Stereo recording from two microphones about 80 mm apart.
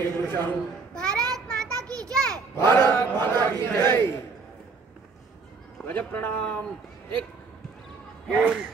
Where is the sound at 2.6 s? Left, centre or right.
Left.